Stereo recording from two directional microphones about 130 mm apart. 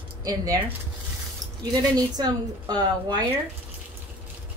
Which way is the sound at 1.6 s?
30° right (ahead or behind).